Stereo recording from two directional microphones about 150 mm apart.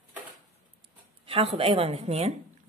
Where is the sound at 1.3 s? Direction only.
40° right (ahead or behind).